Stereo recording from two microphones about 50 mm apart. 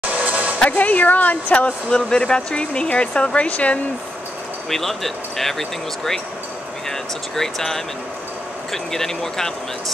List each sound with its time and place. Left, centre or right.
0.2 s a sound: right
0.6 s a woman's voice: left
1.9 s speech: centre
4.6 s speech: centre